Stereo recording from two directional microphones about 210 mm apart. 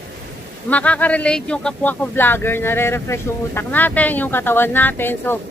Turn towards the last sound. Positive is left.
turn(degrees=10)  # may be behind; listen again after turning